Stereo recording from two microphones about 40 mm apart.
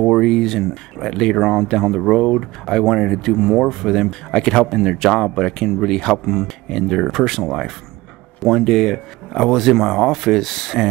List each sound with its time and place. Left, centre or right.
0.0 s speech: centre
2.0 s speech: centre
3.5 s speech: centre
4.3 s speech: centre
4.6 s speech: centre